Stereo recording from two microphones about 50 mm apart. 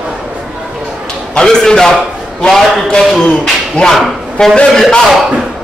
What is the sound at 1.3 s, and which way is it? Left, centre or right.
Speech, centre.